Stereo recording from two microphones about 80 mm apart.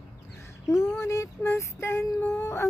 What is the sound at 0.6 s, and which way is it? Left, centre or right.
Child singing, left.